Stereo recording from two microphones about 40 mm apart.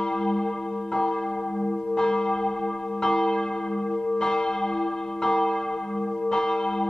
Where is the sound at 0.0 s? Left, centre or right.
Centre.